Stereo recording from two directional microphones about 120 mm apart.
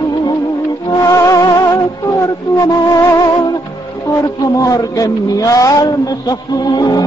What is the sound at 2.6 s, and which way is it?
Music, 30° left (ahead or behind).